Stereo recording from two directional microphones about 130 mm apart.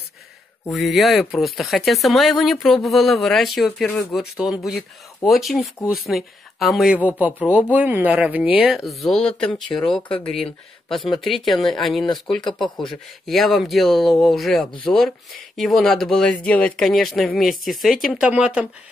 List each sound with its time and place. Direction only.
0.7 s speech: centre (ahead or behind)
7.2 s speech: 10° right (ahead or behind)